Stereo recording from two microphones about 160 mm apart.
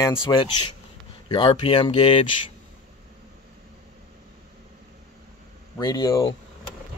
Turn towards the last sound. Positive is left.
turn(degrees=25)  # may be behind; listen again after turning